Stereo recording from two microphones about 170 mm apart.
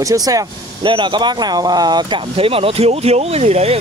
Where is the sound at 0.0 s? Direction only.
20° right (ahead or behind).